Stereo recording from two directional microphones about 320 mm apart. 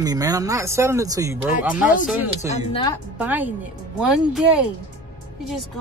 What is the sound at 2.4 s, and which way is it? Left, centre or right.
Speech, centre.